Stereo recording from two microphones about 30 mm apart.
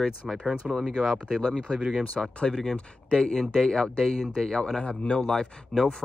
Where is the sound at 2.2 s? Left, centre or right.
Left.